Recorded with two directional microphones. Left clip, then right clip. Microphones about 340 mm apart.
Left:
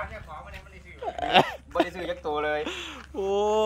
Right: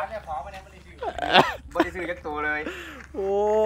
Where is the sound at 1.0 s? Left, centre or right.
Centre.